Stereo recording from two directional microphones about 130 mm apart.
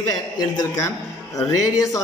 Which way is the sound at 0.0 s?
25° left (ahead or behind).